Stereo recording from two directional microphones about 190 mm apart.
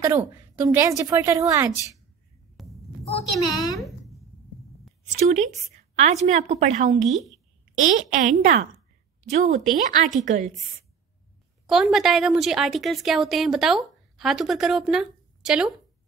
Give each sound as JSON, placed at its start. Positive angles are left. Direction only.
{"t": 0.0, "sound": "a woman's voice", "side_deg": -10}
{"t": 2.6, "sound": "a sound", "side_deg": 0}
{"t": 3.3, "sound": "a woman's voice", "side_deg": 20}
{"t": 5.1, "sound": "speech", "side_deg": -35}
{"t": 11.6, "sound": "a woman's voice", "side_deg": 0}